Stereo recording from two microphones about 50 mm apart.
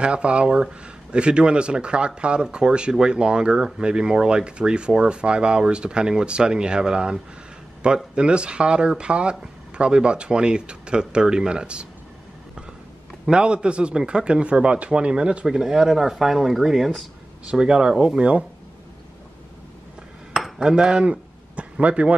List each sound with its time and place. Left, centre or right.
0.0 s a man's voice: right
13.3 s a man's voice: centre
17.5 s a man's voice: centre
20.4 s cutlery: centre